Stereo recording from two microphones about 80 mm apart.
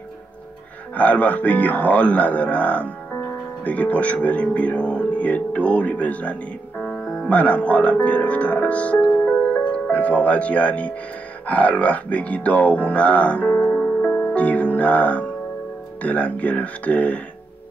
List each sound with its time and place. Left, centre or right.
0.9 s speech: centre
6.8 s music: centre
7.2 s speech: centre